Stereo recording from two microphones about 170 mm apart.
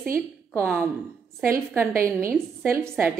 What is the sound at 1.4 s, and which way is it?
A woman's voice, 15° right (ahead or behind).